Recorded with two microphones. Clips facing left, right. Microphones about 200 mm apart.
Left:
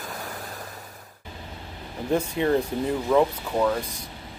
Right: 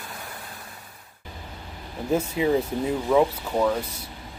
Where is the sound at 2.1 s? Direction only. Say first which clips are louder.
Even; 5° right (ahead or behind).